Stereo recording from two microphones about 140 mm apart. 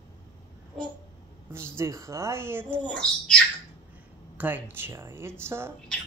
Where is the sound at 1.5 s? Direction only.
20° right (ahead or behind).